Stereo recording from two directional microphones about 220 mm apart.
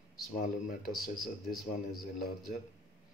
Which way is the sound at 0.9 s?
Centre (ahead or behind).